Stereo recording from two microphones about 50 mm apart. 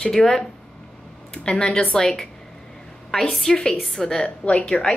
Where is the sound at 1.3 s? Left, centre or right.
Left.